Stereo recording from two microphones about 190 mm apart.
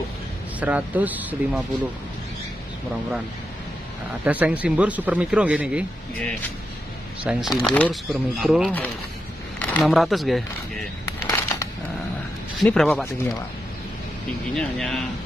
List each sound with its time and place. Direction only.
0.6 s speech: 10° right (ahead or behind)
4.2 s speech: 10° right (ahead or behind)
6.1 s speech: 10° left (ahead or behind)
7.2 s speech: 5° right (ahead or behind)
11.2 s a sound: 15° left (ahead or behind)
12.5 s speech: centre (ahead or behind)
14.5 s speech: 5° left (ahead or behind)